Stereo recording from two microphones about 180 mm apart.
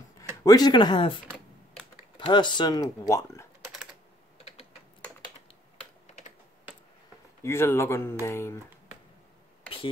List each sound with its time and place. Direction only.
0.4 s speech: 20° left (ahead or behind)
6.0 s typing: 40° left (ahead or behind)
7.4 s speech: 15° left (ahead or behind)